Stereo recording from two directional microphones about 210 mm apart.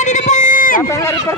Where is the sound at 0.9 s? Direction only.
15° left (ahead or behind).